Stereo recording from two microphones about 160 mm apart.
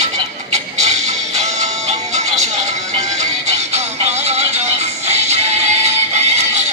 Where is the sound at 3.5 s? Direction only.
45° right (ahead or behind).